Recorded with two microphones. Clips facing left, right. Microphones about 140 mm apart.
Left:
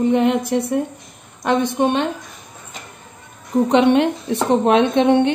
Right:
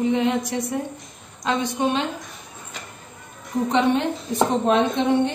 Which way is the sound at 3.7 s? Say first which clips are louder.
Left 5 dB; 75° left (ahead or behind).